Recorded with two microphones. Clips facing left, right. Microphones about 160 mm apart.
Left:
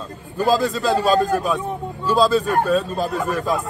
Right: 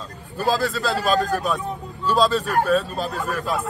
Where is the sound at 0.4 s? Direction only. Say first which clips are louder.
Left 3 dB; 20° left (ahead or behind).